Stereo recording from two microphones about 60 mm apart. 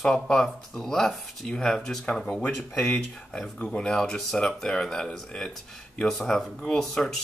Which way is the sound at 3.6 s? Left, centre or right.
Centre.